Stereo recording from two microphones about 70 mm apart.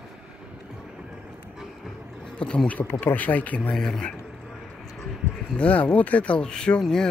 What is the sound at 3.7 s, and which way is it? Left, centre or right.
Speech, centre.